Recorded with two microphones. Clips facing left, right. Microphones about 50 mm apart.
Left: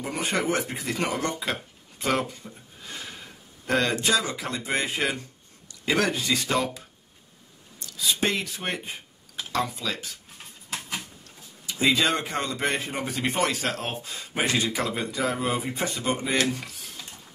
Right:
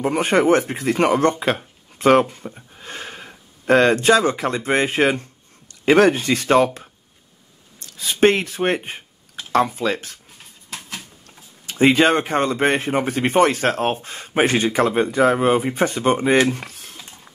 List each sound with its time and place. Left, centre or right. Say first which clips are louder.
0.0 s speech: right 10 dB; right
10.7 s a sound: even; centre
11.6 s speech: right 8 dB; right